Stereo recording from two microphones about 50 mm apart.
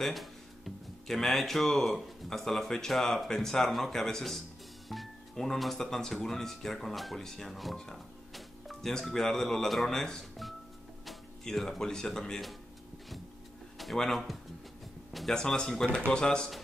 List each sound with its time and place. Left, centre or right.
0.0 s speech: centre
13.7 s speech: centre
15.3 s speech: centre